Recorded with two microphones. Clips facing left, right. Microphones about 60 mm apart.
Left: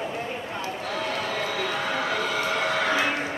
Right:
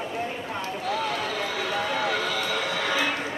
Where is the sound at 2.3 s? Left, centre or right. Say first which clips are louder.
Left 2 dB; left.